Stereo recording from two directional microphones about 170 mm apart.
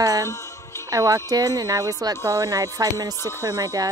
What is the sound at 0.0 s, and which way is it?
Music, 20° right (ahead or behind).